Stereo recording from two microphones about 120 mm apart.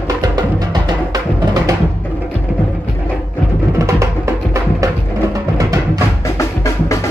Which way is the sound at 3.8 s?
25° right (ahead or behind).